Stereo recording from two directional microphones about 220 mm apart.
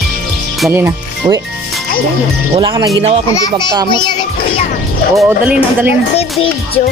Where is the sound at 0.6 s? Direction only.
10° right (ahead or behind).